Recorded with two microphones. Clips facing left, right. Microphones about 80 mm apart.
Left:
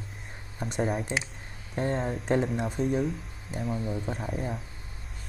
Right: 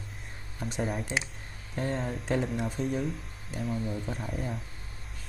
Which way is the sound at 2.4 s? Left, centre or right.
Centre.